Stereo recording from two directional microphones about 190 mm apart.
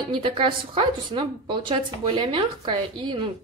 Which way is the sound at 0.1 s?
25° right (ahead or behind).